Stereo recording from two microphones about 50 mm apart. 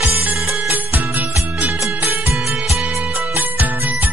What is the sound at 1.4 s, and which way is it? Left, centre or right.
Music, right.